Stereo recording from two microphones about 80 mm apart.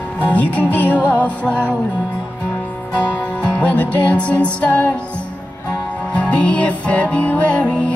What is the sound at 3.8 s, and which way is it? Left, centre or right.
Music, centre.